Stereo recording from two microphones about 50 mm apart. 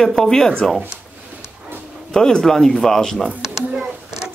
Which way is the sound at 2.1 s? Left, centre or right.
Centre.